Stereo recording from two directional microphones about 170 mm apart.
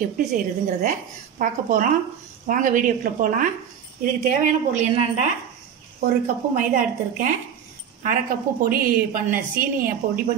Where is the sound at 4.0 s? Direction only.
45° right (ahead or behind).